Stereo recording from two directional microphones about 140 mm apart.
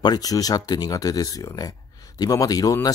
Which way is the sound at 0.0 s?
30° left (ahead or behind).